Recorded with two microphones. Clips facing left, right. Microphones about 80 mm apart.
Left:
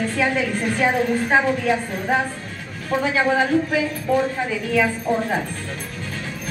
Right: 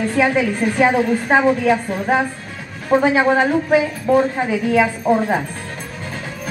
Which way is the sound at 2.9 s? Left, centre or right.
Right.